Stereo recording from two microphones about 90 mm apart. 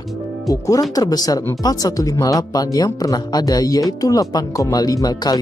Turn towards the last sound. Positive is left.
turn(degrees=50)  # may be behind; listen again after turning